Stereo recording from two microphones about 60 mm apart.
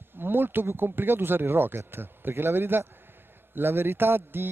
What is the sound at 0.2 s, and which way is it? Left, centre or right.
Speech, right.